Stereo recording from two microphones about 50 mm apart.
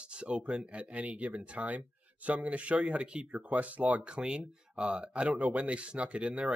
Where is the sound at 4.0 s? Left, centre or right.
Centre.